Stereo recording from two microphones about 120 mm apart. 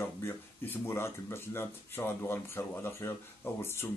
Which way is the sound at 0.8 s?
20° left (ahead or behind).